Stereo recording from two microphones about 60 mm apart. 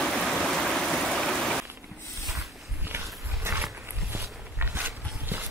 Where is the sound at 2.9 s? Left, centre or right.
Right.